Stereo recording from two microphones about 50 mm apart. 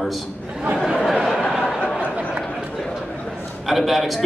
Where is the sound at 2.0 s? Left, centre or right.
Right.